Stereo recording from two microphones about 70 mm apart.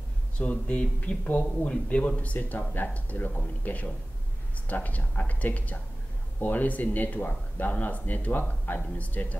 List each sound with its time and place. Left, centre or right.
0.4 s speech: left